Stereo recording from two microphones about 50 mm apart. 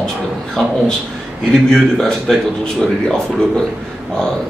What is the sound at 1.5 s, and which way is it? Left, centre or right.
A man's voice, centre.